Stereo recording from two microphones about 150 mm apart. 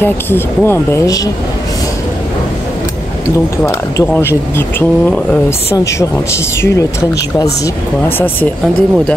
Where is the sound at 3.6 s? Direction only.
15° left (ahead or behind).